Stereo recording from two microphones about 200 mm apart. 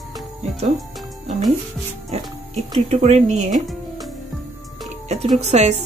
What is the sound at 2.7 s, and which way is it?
Speech, 30° right (ahead or behind).